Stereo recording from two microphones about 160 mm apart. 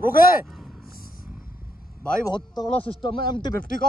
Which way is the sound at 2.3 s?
25° left (ahead or behind).